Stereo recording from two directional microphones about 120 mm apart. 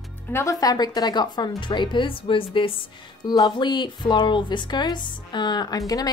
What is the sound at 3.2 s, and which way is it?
A woman's voice, 35° left (ahead or behind).